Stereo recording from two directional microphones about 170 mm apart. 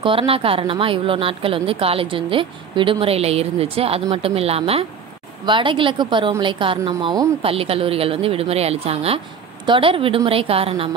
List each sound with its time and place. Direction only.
0.0 s a woman's voice: 35° right (ahead or behind)